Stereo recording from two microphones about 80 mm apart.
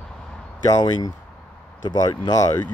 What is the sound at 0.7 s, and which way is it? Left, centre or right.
Speech, left.